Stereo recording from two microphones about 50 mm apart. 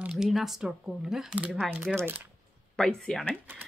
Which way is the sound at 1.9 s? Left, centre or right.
Centre.